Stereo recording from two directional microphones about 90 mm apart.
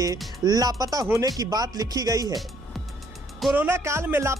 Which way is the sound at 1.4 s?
45° right (ahead or behind).